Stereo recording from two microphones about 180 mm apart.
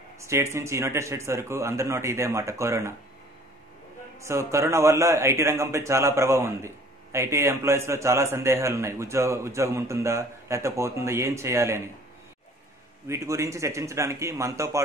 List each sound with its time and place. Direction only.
0.2 s a man's voice: 15° right (ahead or behind)
4.2 s a man's voice: 15° right (ahead or behind)
13.1 s a man's voice: 15° right (ahead or behind)